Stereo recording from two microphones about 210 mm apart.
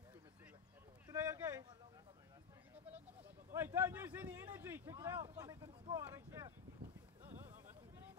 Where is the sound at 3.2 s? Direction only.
10° right (ahead or behind).